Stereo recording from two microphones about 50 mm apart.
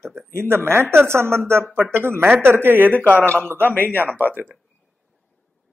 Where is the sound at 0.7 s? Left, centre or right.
Right.